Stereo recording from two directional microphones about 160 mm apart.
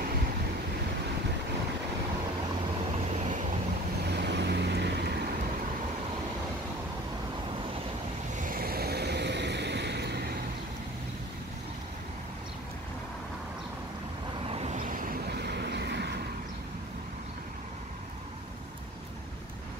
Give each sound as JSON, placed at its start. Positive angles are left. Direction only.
{"t": 4.1, "sound": "vehicle", "side_deg": -90}
{"t": 8.4, "sound": "vehicle", "side_deg": -60}
{"t": 14.5, "sound": "vehicle", "side_deg": -40}
{"t": 14.8, "sound": "vehicle", "side_deg": -60}